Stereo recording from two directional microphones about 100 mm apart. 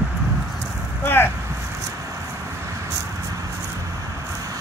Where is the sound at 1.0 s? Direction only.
20° left (ahead or behind).